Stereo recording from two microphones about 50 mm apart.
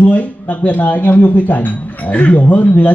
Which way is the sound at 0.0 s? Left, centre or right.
Left.